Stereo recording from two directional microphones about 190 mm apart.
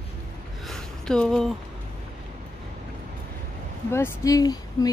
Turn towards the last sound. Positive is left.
turn(degrees=20)  # may be behind; listen again after turning